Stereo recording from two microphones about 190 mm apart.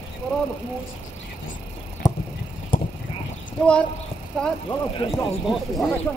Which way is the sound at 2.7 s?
45° left (ahead or behind).